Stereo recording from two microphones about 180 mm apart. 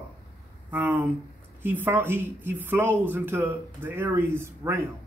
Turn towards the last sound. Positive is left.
turn(degrees=-15)  # may be behind; listen again after turning